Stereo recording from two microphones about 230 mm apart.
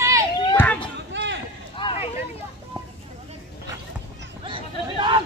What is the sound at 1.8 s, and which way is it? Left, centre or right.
Hubbub, left.